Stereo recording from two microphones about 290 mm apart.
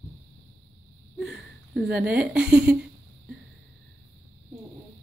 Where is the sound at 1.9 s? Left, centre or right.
Centre.